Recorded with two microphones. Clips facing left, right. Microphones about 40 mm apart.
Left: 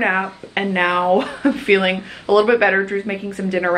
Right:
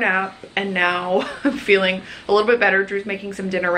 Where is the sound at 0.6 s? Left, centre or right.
Centre.